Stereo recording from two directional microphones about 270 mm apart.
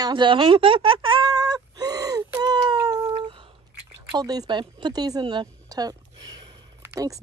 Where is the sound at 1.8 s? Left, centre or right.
Centre.